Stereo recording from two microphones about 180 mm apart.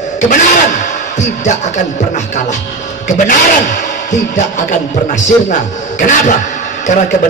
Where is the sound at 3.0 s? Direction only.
45° left (ahead or behind).